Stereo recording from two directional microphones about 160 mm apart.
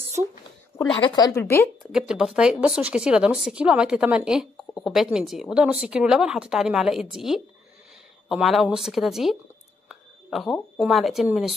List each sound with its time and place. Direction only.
0.2 s a sound: 20° right (ahead or behind)
0.9 s speech: 30° left (ahead or behind)
1.8 s speech: 5° right (ahead or behind)